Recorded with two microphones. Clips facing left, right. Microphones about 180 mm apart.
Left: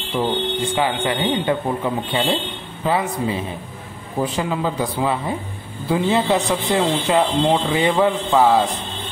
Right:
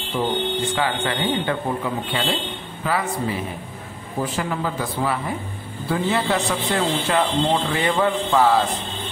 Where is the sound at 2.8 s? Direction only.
25° left (ahead or behind).